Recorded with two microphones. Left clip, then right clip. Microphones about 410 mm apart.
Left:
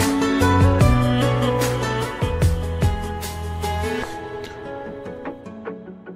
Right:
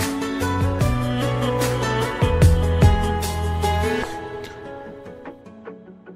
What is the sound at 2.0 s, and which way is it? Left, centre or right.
Music, right.